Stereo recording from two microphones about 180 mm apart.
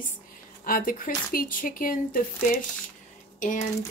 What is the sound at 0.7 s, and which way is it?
Speech, 50° left (ahead or behind).